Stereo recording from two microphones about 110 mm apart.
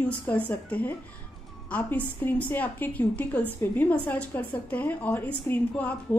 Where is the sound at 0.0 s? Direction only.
15° left (ahead or behind).